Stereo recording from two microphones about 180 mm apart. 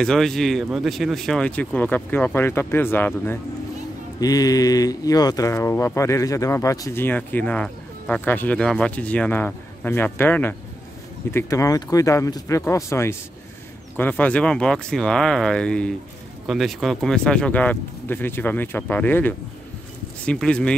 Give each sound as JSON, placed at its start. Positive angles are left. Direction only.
{"t": 0.0, "sound": "speech", "side_deg": 0}